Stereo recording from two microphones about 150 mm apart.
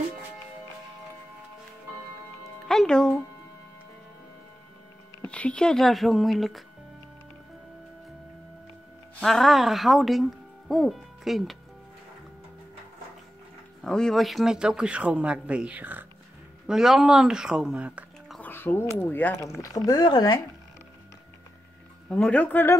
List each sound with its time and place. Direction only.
2.6 s speech: 5° left (ahead or behind)
5.2 s speech: 10° left (ahead or behind)
9.2 s speech: centre (ahead or behind)
13.8 s speech: 5° left (ahead or behind)
18.4 s speech: 15° left (ahead or behind)
22.1 s speech: 10° left (ahead or behind)